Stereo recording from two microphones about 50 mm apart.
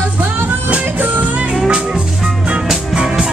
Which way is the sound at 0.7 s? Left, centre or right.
Right.